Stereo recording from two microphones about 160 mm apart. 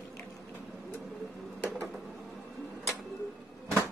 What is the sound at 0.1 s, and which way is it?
Bird, 15° left (ahead or behind).